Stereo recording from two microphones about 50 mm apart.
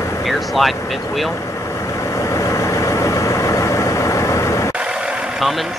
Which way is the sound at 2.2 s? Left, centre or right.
Left.